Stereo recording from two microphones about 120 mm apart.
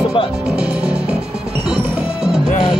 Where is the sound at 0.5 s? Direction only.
10° right (ahead or behind).